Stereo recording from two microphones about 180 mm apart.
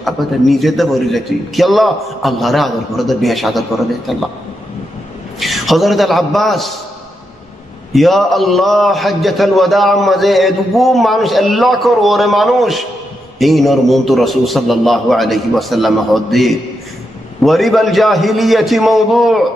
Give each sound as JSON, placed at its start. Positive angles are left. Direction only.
{"t": 0.0, "sound": "a man's voice", "side_deg": 0}
{"t": 5.4, "sound": "a man's voice", "side_deg": 0}
{"t": 7.9, "sound": "a man's voice", "side_deg": 0}